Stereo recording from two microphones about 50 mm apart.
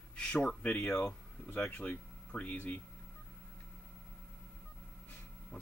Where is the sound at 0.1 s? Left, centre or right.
Left.